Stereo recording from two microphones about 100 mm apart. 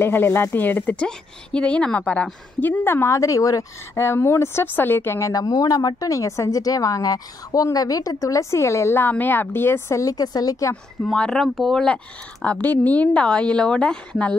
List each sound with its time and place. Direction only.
0.0 s a woman's voice: 20° left (ahead or behind)
5.3 s speech: 40° left (ahead or behind)
11.1 s speech: 5° left (ahead or behind)